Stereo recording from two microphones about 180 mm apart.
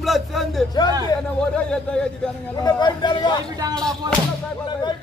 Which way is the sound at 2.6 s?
25° left (ahead or behind).